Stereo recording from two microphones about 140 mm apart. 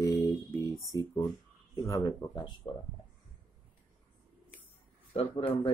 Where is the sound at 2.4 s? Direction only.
35° left (ahead or behind).